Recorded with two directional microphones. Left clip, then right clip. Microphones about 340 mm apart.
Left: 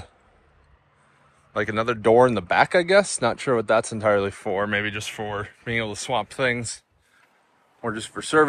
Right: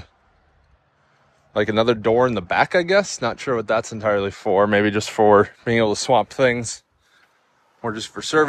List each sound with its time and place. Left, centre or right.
1.5 s speech: centre
7.8 s speech: centre